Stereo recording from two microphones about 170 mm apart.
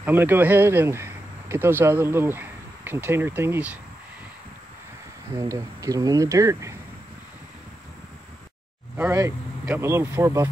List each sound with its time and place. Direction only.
0.0 s speech: 10° right (ahead or behind)
5.4 s speech: 20° right (ahead or behind)
8.9 s speech: 15° right (ahead or behind)